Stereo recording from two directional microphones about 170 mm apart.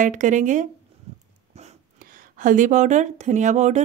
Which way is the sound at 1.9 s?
55° right (ahead or behind).